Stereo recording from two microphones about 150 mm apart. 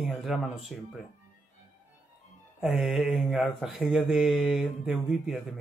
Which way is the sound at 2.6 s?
Centre (ahead or behind).